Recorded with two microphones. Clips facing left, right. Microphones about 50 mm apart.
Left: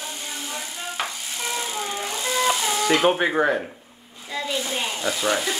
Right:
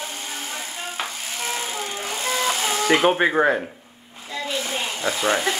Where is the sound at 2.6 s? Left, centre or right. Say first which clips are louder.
Right 1 dB; right.